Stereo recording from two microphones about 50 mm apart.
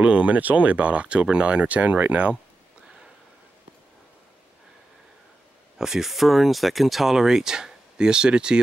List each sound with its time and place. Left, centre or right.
0.0 s speech: right
5.8 s speech: centre